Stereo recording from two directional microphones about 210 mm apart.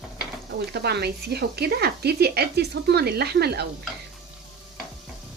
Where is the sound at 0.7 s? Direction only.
50° right (ahead or behind).